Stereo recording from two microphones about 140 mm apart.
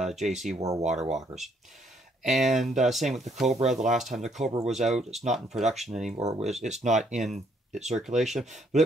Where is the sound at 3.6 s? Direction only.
55° right (ahead or behind).